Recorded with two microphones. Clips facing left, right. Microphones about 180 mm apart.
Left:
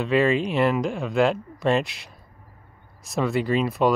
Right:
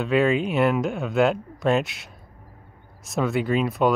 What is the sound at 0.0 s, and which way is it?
Speech, centre (ahead or behind).